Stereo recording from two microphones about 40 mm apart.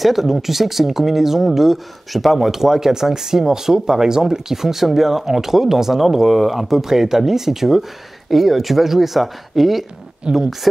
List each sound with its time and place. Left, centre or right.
0.0 s speech: centre
10.3 s speech: right